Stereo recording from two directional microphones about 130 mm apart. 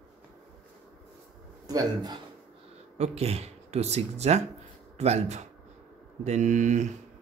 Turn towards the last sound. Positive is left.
turn(degrees=-65)  # may be behind; listen again after turning